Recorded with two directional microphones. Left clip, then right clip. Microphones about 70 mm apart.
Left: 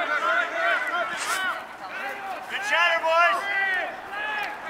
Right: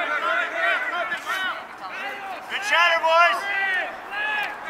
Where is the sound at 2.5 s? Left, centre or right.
Right.